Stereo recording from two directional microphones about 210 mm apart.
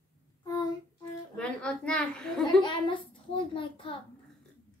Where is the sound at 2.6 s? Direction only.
25° left (ahead or behind).